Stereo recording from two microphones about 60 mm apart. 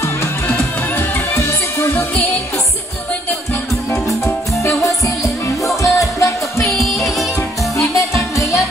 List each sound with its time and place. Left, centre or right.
0.5 s music: left
4.6 s music: left
7.7 s music: left